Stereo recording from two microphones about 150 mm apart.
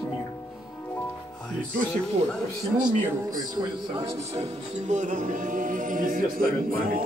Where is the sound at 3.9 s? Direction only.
45° right (ahead or behind).